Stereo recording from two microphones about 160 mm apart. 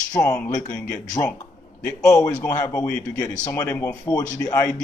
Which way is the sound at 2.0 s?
20° left (ahead or behind).